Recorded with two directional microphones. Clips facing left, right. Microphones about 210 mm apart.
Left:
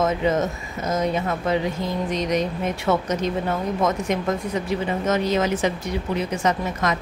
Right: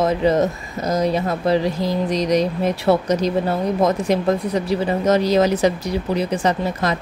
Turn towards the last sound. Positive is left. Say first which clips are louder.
# right 3 dB
turn(degrees=-35)  # may be behind; listen again after turning